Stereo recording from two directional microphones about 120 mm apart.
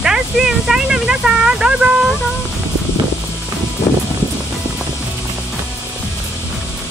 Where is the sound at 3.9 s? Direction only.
25° left (ahead or behind).